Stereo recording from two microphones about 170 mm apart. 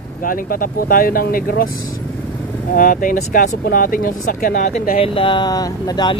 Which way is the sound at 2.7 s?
55° left (ahead or behind).